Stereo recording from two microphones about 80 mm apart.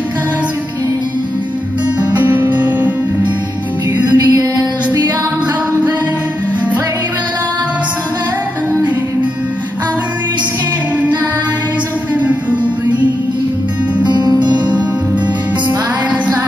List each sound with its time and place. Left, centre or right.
2.2 s music: right
4.1 s music: right
12.2 s music: centre
14.0 s music: right